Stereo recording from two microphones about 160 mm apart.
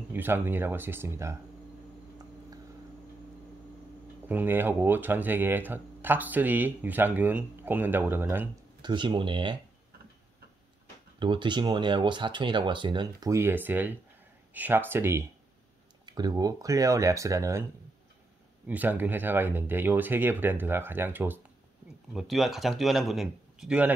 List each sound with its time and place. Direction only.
0.1 s speech: 15° right (ahead or behind)
4.3 s speech: 10° right (ahead or behind)
8.8 s speech: 30° right (ahead or behind)
11.1 s speech: 30° right (ahead or behind)
18.7 s speech: 10° right (ahead or behind)
22.1 s speech: centre (ahead or behind)